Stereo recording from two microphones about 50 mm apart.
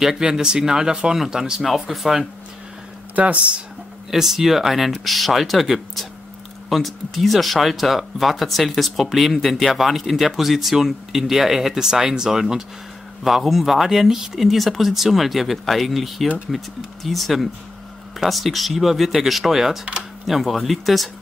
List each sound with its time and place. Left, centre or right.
0.0 s speech: centre
3.2 s speech: right
4.1 s speech: centre
20.2 s speech: centre